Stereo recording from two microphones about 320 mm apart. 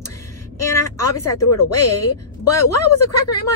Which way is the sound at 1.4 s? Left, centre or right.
Left.